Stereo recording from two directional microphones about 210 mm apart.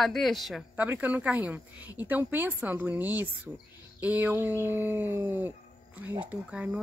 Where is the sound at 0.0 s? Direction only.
Centre (ahead or behind).